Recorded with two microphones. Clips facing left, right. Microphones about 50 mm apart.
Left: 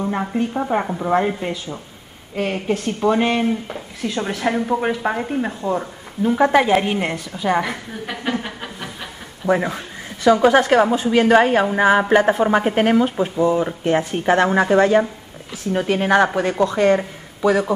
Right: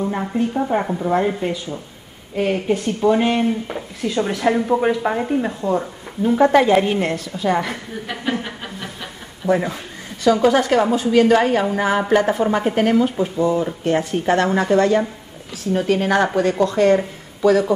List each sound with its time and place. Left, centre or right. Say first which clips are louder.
0.0 s a woman's voice: even; centre
8.3 s a sound: even; centre
9.5 s a woman's voice: even; centre